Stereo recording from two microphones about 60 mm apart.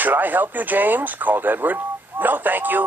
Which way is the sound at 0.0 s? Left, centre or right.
Right.